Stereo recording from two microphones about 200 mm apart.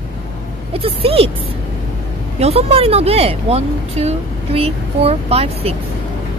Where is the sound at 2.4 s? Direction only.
30° right (ahead or behind).